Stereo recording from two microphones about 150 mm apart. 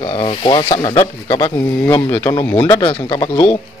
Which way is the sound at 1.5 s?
15° left (ahead or behind).